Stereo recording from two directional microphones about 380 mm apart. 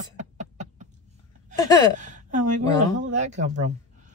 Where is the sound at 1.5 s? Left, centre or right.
Centre.